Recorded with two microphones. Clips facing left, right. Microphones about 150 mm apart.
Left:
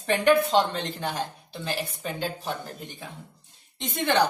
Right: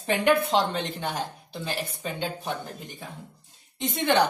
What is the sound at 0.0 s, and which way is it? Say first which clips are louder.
Speech: even; 10° right (ahead or behind).